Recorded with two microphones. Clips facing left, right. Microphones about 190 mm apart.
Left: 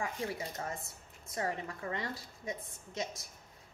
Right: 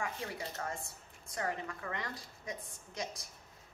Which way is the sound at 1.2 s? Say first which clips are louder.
Left 1 dB; 25° left (ahead or behind).